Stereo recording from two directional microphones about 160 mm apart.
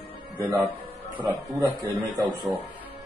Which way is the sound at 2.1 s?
25° right (ahead or behind).